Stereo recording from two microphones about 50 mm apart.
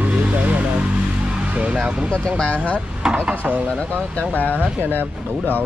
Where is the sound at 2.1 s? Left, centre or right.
Left.